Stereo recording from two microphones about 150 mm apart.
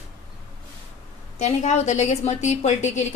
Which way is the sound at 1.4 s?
50° left (ahead or behind).